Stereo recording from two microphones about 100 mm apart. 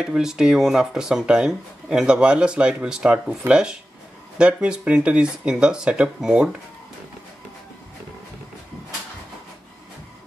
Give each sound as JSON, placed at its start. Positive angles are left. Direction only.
{"t": 0.0, "sound": "speech", "side_deg": -5}